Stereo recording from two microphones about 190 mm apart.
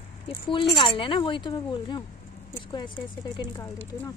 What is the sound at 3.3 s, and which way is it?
Speech, 20° left (ahead or behind).